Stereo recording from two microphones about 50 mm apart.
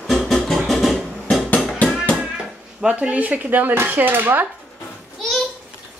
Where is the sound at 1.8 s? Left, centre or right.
Left.